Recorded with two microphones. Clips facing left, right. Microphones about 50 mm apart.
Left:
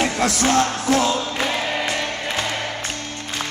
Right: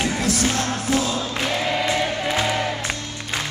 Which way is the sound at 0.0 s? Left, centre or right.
Left.